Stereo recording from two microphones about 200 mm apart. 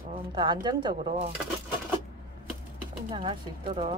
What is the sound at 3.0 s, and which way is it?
Speech, 25° right (ahead or behind).